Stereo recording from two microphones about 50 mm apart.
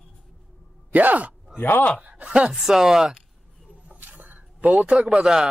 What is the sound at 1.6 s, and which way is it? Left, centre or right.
Speech, left.